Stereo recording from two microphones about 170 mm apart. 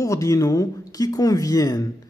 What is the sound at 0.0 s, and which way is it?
Speech, 20° left (ahead or behind).